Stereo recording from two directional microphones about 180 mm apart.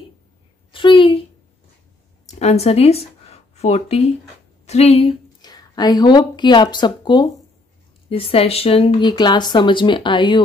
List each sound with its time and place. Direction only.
0.7 s a sound: 30° left (ahead or behind)
2.3 s speech: 35° left (ahead or behind)
5.4 s speech: 20° left (ahead or behind)